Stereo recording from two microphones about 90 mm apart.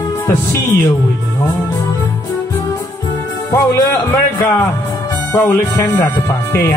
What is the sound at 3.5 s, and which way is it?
Speech, 35° left (ahead or behind).